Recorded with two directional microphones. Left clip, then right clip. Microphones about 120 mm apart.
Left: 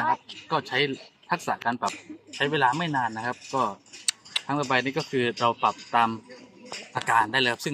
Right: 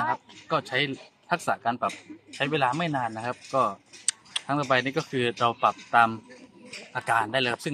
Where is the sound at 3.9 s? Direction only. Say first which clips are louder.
Left 3 dB; 10° left (ahead or behind).